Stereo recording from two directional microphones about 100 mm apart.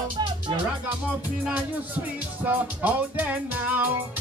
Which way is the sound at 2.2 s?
15° right (ahead or behind).